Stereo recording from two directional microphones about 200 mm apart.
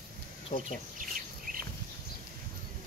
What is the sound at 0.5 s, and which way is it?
Speech, 40° left (ahead or behind).